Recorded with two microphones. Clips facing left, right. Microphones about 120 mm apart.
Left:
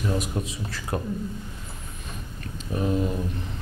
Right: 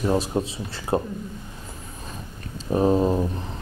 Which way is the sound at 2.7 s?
35° right (ahead or behind).